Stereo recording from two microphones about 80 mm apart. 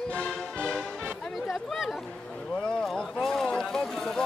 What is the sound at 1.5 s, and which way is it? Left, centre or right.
Speech, centre.